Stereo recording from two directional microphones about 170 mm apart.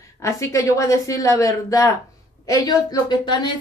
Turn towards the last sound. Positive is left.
turn(degrees=25)  # may be behind; listen again after turning